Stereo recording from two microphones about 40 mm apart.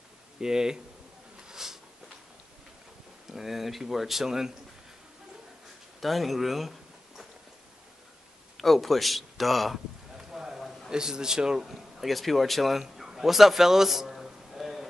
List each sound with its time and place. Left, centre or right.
0.4 s speech: centre
1.5 s a sound: centre
3.3 s speech: centre
5.9 s speech: centre
8.5 s speech: centre
10.1 s a sound: centre
10.9 s speech: centre
11.6 s speech: centre
12.8 s a sound: centre